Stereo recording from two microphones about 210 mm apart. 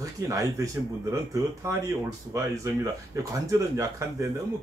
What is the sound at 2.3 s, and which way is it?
Speech, 15° right (ahead or behind).